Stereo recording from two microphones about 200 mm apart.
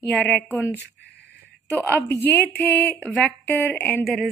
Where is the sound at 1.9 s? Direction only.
10° left (ahead or behind).